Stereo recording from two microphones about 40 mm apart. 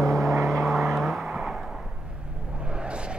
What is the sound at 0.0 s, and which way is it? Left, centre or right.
Vehicle, centre.